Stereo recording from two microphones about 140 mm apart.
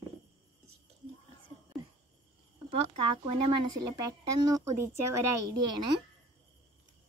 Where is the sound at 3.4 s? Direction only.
30° right (ahead or behind).